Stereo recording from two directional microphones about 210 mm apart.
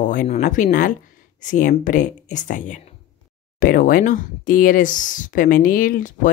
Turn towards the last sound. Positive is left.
turn(degrees=40)  # may be behind; listen again after turning